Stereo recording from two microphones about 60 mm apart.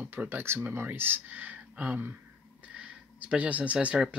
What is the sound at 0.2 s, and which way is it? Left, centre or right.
Speech, right.